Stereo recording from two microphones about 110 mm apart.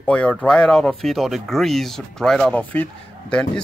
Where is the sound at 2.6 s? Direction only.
15° left (ahead or behind).